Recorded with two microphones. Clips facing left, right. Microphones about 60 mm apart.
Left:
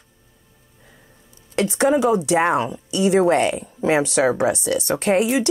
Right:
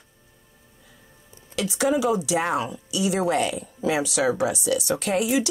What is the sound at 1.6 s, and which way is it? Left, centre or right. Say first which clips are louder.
Speech: left 5 dB; left.